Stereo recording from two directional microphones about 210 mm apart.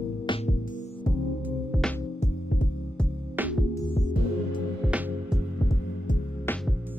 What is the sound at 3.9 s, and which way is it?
Music, 30° left (ahead or behind).